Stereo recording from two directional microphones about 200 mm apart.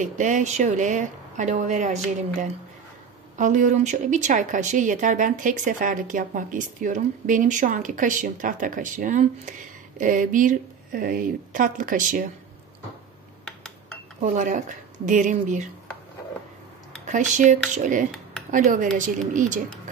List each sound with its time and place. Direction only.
0.0 s a woman's voice: 40° right (ahead or behind)
3.3 s a woman's voice: 40° right (ahead or behind)
14.2 s a woman's voice: 40° right (ahead or behind)
17.0 s a woman's voice: 40° right (ahead or behind)